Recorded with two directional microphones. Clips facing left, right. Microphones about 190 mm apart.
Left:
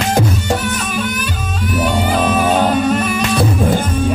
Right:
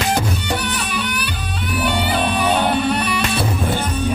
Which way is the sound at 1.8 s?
45° left (ahead or behind).